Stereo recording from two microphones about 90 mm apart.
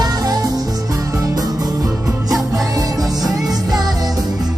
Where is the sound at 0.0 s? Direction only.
45° right (ahead or behind).